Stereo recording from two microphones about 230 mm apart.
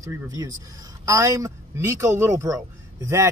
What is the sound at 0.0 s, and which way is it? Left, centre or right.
Speech, centre.